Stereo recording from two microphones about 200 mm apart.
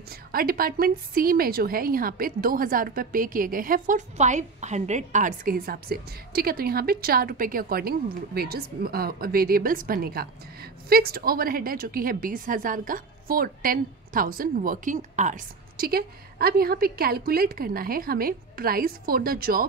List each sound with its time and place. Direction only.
0.1 s a woman's voice: 50° right (ahead or behind)